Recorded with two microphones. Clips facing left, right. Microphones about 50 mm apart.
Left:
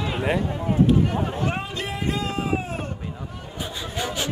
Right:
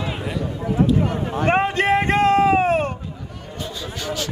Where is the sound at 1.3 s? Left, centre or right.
Right.